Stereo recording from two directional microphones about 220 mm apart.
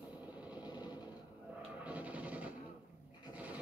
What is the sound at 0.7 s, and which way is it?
Sewing machine, 20° left (ahead or behind).